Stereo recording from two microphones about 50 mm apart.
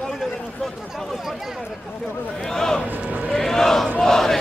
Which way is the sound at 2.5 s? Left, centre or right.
Centre.